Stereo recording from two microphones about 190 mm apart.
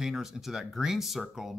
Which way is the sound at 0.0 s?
Centre (ahead or behind).